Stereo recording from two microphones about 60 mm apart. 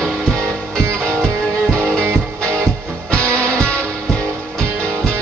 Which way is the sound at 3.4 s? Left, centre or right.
Centre.